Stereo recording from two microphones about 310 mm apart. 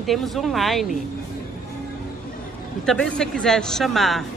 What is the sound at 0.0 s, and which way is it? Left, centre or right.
Speech, centre.